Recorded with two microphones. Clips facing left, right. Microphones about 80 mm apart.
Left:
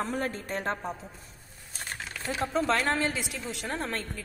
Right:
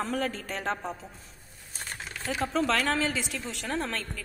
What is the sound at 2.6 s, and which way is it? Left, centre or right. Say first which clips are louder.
Speech: even; left.